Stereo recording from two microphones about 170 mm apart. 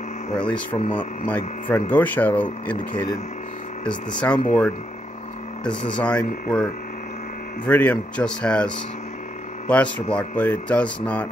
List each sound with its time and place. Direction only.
0.5 s speech: 30° left (ahead or behind)
0.9 s speech: 10° left (ahead or behind)